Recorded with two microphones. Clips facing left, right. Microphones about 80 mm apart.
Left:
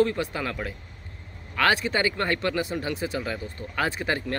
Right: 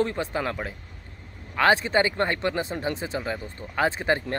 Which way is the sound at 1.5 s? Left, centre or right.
Right.